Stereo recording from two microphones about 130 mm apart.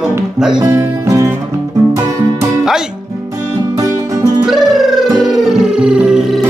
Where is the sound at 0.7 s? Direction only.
20° right (ahead or behind).